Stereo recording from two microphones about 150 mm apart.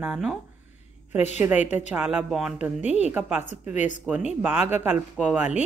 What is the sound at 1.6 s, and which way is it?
Speech, 50° left (ahead or behind).